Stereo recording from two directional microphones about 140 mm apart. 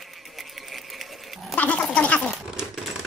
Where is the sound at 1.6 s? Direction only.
10° left (ahead or behind).